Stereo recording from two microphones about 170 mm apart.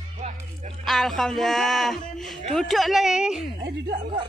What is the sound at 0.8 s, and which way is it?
Speech, centre (ahead or behind).